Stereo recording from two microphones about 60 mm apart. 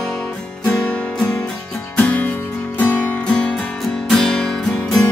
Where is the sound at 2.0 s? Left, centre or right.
Left.